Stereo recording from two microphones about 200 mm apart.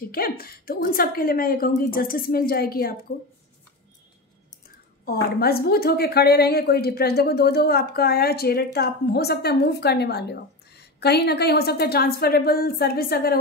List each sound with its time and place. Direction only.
0.1 s a woman's voice: 50° left (ahead or behind)
4.6 s a woman's voice: 50° left (ahead or behind)